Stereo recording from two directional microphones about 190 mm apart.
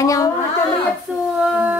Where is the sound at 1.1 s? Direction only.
5° right (ahead or behind).